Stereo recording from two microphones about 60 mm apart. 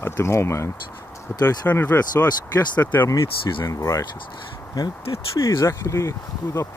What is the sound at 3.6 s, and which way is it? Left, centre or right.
Speech, left.